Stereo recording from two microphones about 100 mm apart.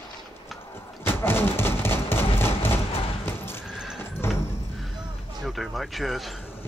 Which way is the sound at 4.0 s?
25° left (ahead or behind).